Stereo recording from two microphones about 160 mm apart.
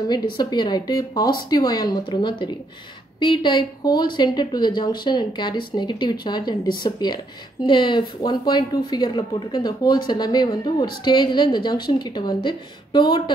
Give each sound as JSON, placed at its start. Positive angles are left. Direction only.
{"t": 0.1, "sound": "a woman's voice", "side_deg": 25}